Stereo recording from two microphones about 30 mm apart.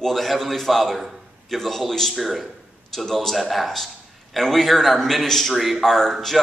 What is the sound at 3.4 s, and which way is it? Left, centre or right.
A man's voice, centre.